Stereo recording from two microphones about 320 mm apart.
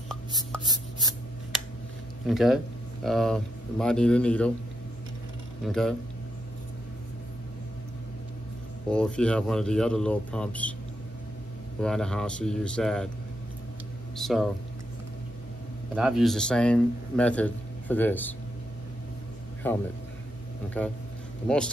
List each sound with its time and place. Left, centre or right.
0.7 s a sound: centre
2.2 s speech: centre
5.7 s speech: centre
8.9 s speech: centre
11.8 s speech: centre
14.1 s speech: centre
15.9 s speech: centre
19.6 s speech: centre